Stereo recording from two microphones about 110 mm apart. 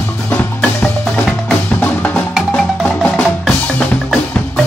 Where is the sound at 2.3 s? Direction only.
Centre (ahead or behind).